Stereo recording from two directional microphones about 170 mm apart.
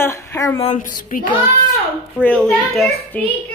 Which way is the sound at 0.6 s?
45° left (ahead or behind).